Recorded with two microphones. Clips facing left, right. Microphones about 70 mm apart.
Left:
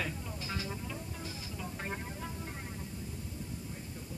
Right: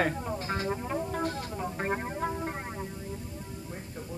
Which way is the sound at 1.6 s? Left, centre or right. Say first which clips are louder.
Right 9 dB; right.